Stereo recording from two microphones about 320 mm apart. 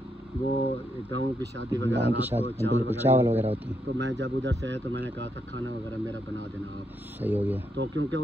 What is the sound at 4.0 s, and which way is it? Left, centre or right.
Speech, right.